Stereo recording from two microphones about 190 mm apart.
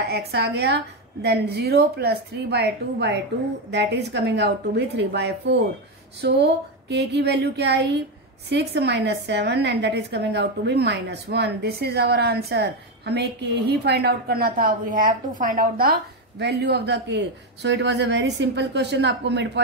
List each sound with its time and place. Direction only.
0.3 s a woman's voice: 60° right (ahead or behind)